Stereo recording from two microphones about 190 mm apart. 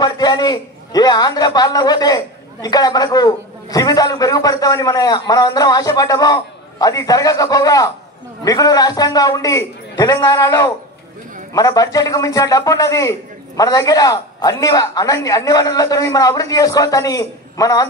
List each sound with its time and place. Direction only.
0.0 s a man's voice: 20° left (ahead or behind)